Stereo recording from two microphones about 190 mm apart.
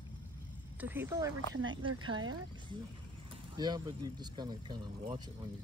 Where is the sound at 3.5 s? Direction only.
20° right (ahead or behind).